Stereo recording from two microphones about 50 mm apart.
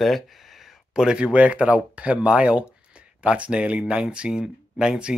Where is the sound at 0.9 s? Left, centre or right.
Centre.